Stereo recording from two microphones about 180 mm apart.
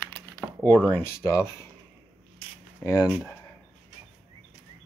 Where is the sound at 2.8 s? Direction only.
20° left (ahead or behind).